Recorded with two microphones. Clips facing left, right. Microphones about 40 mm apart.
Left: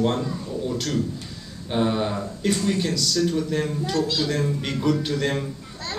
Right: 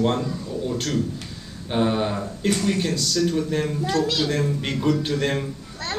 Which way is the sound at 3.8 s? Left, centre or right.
Right.